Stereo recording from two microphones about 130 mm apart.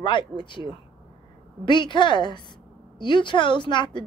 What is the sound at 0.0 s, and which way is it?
Speech, 35° left (ahead or behind).